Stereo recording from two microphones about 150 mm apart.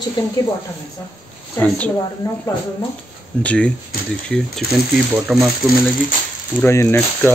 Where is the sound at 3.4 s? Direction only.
10° left (ahead or behind).